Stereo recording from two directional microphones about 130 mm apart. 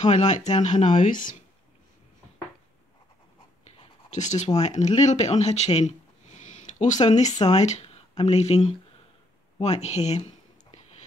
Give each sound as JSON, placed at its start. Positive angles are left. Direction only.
{"t": 0.0, "sound": "speech", "side_deg": 65}
{"t": 3.7, "sound": "writing", "side_deg": 55}
{"t": 4.6, "sound": "speech", "side_deg": 60}
{"t": 6.4, "sound": "a sound", "side_deg": 65}
{"t": 7.2, "sound": "speech", "side_deg": 30}
{"t": 7.5, "sound": "speech", "side_deg": 60}
{"t": 9.6, "sound": "a sound", "side_deg": 60}